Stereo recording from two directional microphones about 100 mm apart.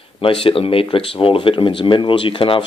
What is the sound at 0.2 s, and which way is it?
Speech, 65° left (ahead or behind).